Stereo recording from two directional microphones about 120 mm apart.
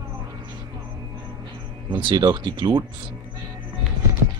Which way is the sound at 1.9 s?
40° right (ahead or behind).